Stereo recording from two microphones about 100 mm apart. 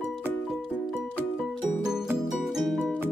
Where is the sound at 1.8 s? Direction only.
5° right (ahead or behind).